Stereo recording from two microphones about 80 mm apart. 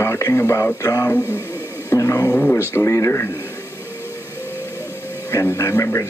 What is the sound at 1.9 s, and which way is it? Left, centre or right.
Music, left.